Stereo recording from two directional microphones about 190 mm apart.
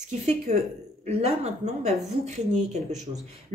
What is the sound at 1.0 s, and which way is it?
Speech, 35° right (ahead or behind).